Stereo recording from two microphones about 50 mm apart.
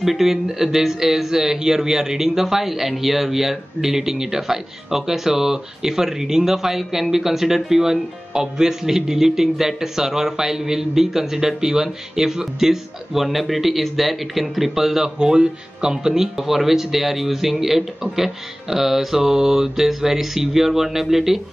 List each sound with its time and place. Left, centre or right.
0.0 s speech: centre